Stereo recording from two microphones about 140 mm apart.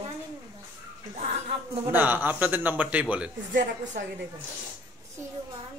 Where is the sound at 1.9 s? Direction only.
15° right (ahead or behind).